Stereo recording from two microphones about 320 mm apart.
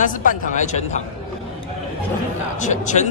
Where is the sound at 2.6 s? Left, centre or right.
Left.